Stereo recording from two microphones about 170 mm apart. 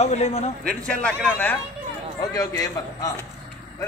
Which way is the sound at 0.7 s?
5° left (ahead or behind).